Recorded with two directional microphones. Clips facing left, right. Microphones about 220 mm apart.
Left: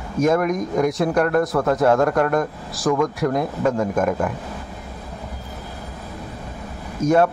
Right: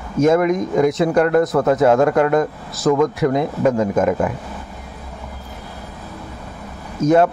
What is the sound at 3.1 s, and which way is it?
Speech, centre (ahead or behind).